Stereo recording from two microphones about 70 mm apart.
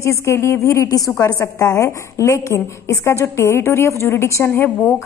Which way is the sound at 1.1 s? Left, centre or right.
Left.